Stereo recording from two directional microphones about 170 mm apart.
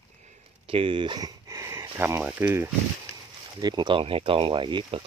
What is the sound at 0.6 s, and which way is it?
Speech, 30° right (ahead or behind).